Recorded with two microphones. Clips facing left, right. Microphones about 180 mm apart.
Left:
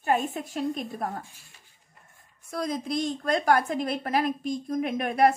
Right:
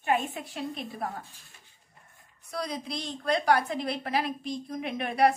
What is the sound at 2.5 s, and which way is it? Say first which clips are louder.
A woman's voice: left 5 dB; 45° left (ahead or behind).